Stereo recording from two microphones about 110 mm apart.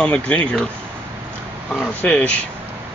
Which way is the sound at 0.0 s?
10° left (ahead or behind).